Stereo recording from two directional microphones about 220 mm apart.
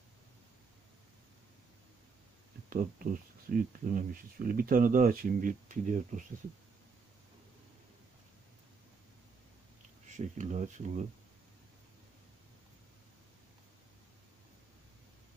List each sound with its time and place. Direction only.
2.7 s speech: 40° right (ahead or behind)
10.0 s speech: 35° right (ahead or behind)